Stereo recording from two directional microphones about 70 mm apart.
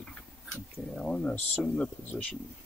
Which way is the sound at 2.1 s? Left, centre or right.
Left.